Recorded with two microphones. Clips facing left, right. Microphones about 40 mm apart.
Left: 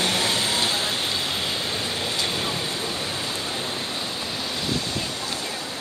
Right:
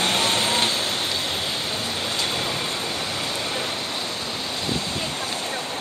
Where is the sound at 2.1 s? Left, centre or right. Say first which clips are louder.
Right 1 dB; right.